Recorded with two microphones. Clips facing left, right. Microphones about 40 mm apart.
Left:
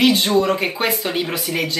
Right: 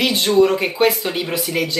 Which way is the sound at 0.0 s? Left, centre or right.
Centre.